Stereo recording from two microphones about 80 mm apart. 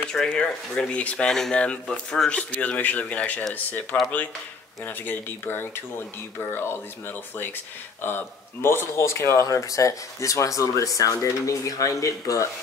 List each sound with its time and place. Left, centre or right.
0.1 s speech: centre; by 12.4 s left